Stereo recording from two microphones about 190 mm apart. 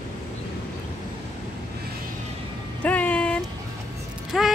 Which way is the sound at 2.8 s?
10° left (ahead or behind).